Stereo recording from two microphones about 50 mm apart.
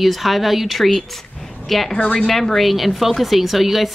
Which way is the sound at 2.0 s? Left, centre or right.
Left.